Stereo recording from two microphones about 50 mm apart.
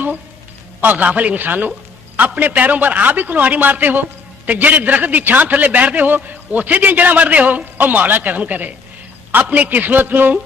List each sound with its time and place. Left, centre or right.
0.7 s a man's voice: right